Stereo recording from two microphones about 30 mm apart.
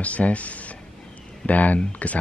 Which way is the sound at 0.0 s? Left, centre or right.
Left.